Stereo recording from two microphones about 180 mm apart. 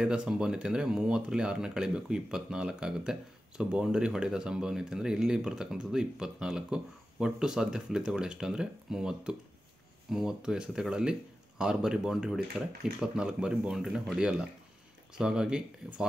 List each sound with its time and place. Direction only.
0.0 s speech: 5° right (ahead or behind)